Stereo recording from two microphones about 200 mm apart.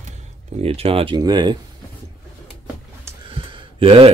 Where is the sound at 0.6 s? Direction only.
30° right (ahead or behind).